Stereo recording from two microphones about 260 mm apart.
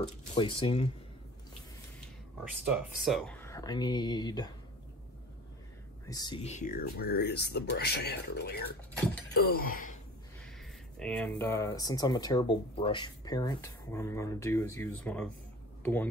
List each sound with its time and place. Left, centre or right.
0.3 s speech: left
2.7 s speech: centre
6.0 s speech: centre; by 9.9 s left
10.4 s speech: centre